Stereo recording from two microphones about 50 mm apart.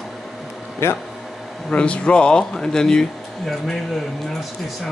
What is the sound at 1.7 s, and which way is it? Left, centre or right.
Speech, left.